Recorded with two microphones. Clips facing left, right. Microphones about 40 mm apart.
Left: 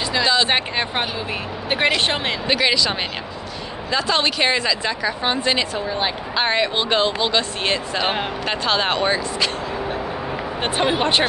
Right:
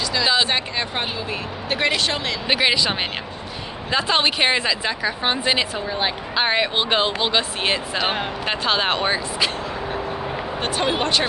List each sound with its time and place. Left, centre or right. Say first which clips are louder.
0.5 s speech: left 3 dB; left
2.4 s a woman's voice: even; centre
8.0 s a woman's voice: left 1 dB; centre
10.6 s speech: left 2 dB; left